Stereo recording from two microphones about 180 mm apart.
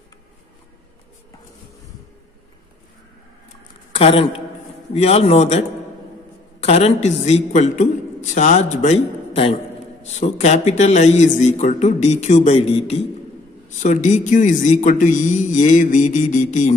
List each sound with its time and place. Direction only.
3.9 s a man's voice: 30° left (ahead or behind)